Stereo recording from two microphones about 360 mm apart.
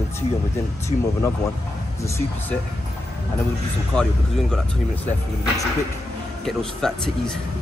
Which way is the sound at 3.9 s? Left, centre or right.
Centre.